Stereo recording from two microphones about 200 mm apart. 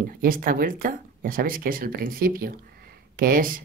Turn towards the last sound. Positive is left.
turn(degrees=-45)  # may be behind; listen again after turning